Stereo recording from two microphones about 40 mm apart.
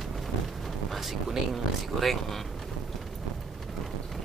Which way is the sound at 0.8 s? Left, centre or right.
Centre.